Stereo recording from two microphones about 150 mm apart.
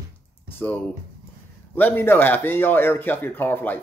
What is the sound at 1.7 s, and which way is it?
Speech, 15° left (ahead or behind).